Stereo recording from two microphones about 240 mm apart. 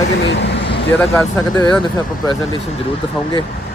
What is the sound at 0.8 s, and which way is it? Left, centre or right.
Speech, centre.